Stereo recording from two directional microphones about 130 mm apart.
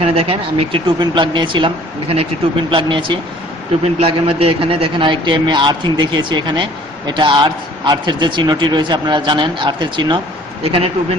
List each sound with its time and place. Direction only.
0.0 s a man's voice: 50° right (ahead or behind)